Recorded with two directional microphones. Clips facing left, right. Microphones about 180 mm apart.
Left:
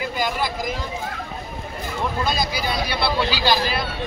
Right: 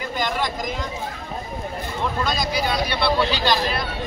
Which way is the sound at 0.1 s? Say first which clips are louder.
Even; 10° left (ahead or behind).